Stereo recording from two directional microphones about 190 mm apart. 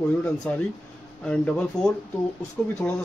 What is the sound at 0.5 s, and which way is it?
Speech, 10° left (ahead or behind).